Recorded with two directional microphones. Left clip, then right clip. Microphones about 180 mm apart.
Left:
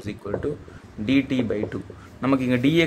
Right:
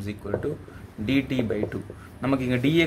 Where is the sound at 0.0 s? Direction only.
10° left (ahead or behind).